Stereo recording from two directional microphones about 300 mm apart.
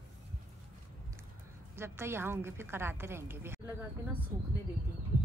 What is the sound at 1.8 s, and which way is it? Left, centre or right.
A woman's voice, centre.